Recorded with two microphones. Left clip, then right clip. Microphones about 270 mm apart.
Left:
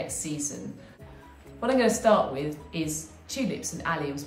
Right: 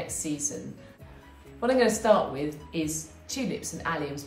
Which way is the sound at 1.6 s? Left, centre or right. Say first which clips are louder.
Even; centre.